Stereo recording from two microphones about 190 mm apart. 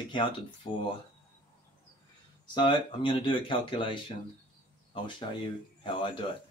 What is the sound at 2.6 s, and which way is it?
Speech, 25° left (ahead or behind).